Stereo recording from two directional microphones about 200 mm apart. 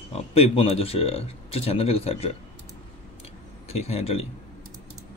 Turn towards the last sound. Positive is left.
turn(degrees=30)  # may be behind; listen again after turning